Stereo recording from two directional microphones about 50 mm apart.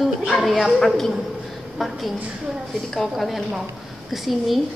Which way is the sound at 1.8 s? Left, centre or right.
Centre.